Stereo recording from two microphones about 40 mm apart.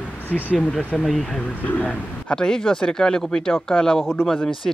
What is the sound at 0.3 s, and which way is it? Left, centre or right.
Speech, centre.